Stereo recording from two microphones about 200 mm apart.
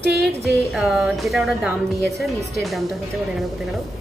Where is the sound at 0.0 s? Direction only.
55° right (ahead or behind).